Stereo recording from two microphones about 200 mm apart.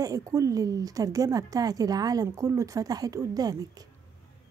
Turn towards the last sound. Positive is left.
turn(degrees=-20)  # may be behind; listen again after turning